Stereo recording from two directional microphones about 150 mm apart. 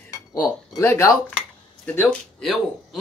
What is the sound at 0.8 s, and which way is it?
Speech, 15° left (ahead or behind).